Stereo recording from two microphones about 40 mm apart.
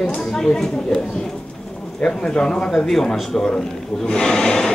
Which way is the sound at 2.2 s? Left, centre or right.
Left.